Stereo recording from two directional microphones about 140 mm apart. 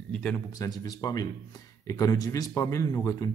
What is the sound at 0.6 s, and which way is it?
Speech, 25° left (ahead or behind).